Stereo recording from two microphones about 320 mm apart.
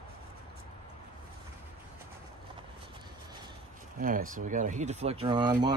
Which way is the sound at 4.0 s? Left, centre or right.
Right.